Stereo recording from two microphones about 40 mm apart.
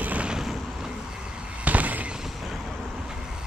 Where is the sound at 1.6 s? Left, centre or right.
Right.